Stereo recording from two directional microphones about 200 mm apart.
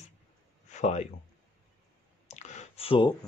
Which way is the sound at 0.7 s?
35° left (ahead or behind).